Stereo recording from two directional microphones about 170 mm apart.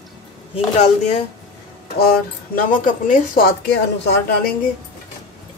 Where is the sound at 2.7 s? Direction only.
55° left (ahead or behind).